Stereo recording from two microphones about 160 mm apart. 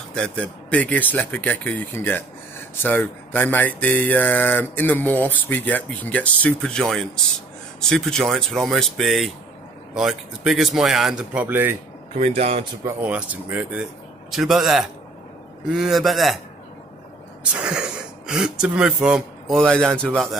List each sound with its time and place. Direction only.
0.1 s speech: 5° left (ahead or behind); by 11.7 s 10° right (ahead or behind)
12.2 s speech: 40° right (ahead or behind)
12.8 s speech: 10° right (ahead or behind)
17.4 s speech: 5° right (ahead or behind)